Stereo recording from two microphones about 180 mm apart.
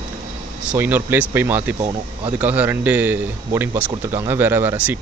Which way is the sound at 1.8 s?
25° right (ahead or behind).